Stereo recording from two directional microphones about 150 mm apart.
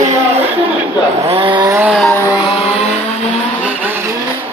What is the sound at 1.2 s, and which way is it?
Chainsaw, 35° right (ahead or behind).